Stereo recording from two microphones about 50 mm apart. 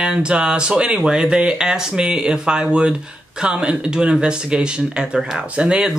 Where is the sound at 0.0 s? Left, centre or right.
Centre.